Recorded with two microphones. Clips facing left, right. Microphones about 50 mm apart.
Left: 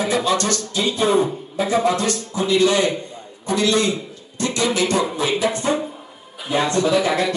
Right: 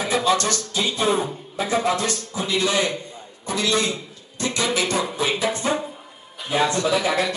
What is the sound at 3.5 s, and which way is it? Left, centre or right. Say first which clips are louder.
Speech: left 4 dB; centre.